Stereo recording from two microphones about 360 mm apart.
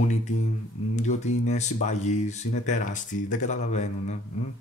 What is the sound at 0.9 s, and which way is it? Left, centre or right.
Speech, centre.